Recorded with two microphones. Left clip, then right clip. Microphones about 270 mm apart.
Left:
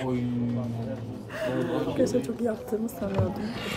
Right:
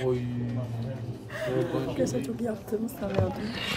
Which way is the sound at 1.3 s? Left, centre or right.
Centre.